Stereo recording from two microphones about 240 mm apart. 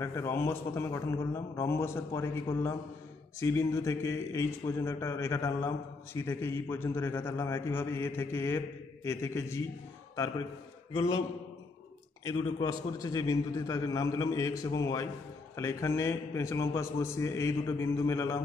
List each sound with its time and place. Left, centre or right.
0.0 s a man's voice: centre
3.3 s a man's voice: centre
11.0 s a man's voice: centre
12.3 s a man's voice: centre